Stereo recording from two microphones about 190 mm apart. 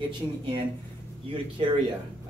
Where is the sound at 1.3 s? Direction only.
25° right (ahead or behind).